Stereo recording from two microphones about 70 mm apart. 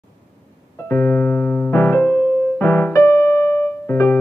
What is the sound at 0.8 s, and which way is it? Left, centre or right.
Piano, left.